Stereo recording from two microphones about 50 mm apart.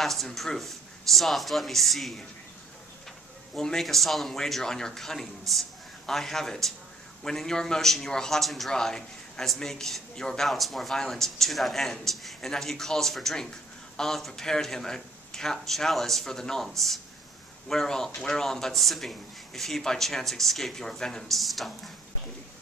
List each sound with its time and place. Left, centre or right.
0.0 s speech: centre
3.5 s a man's voice: centre